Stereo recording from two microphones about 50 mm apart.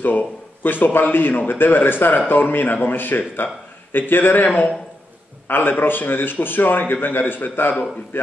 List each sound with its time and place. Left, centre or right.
0.0 s a man's voice: left
5.5 s a man's voice: left